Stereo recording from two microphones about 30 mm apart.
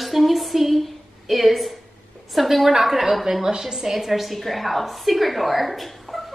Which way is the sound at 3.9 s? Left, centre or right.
Centre.